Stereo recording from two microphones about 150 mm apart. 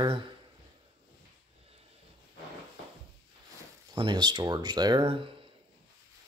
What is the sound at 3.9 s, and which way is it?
Speech, 30° right (ahead or behind).